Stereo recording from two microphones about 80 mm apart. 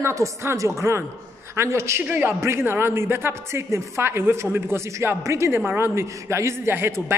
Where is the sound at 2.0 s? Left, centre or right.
Right.